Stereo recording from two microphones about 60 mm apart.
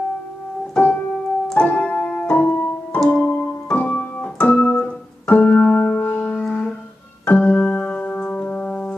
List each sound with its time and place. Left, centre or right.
0.7 s keyboard: left